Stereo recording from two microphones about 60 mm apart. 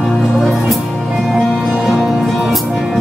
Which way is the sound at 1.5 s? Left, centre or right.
Centre.